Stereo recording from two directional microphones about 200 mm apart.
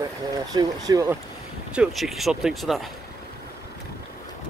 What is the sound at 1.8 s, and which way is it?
Speech, centre (ahead or behind).